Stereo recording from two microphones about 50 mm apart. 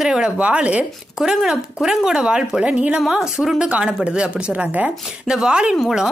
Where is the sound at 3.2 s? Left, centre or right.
Centre.